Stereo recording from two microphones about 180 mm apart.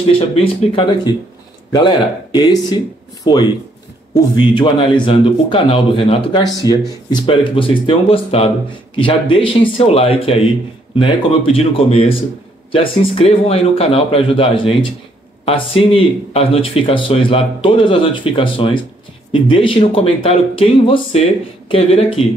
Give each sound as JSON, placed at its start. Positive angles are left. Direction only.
{"t": 0.3, "sound": "speech", "side_deg": 30}